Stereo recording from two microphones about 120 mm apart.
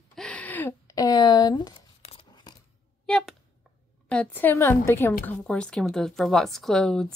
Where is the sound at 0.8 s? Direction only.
30° left (ahead or behind).